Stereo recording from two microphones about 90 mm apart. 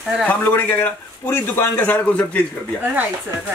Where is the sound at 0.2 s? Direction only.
15° left (ahead or behind).